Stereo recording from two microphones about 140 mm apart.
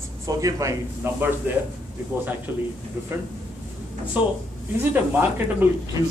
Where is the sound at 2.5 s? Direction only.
15° right (ahead or behind).